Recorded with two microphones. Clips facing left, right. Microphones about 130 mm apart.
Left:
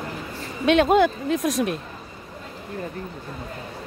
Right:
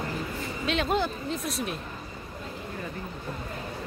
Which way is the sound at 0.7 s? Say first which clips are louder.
Left 10 dB; 60° left (ahead or behind).